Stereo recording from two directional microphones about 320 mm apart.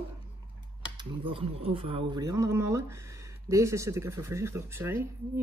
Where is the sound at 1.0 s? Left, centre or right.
Centre.